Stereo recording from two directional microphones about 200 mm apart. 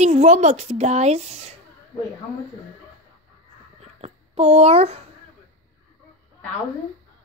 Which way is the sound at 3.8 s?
30° right (ahead or behind).